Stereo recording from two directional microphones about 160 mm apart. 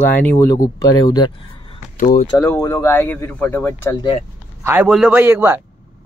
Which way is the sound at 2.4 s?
15° left (ahead or behind).